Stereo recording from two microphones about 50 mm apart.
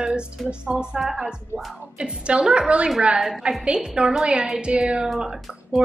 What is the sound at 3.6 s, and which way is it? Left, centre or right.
A woman's voice, centre.